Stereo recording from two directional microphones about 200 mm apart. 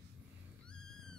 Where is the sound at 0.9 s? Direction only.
Centre (ahead or behind).